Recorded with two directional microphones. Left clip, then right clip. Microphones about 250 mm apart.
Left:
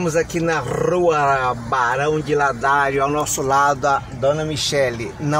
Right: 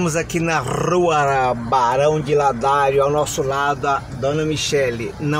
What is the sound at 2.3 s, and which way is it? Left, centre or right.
Speech, left.